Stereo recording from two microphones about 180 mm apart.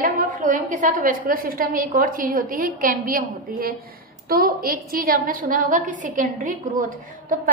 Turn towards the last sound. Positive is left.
turn(degrees=-45)  # may be behind; listen again after turning